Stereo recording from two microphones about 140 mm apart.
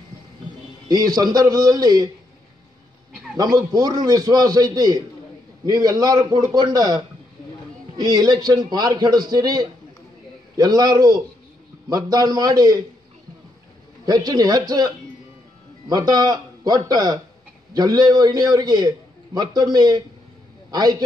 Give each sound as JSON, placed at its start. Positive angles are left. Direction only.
{"t": 0.8, "sound": "a man's voice", "side_deg": -30}
{"t": 3.3, "sound": "a man's voice", "side_deg": -25}
{"t": 14.0, "sound": "a man's voice", "side_deg": -30}
{"t": 15.9, "sound": "a man's voice", "side_deg": -30}